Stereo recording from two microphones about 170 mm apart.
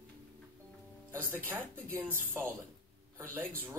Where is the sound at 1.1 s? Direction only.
10° right (ahead or behind).